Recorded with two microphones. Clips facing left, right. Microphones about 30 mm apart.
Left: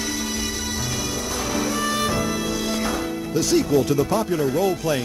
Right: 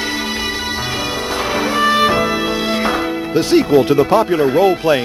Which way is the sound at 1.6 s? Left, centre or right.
Right.